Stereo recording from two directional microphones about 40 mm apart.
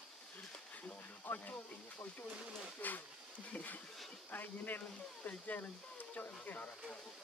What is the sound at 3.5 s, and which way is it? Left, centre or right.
Speech, left.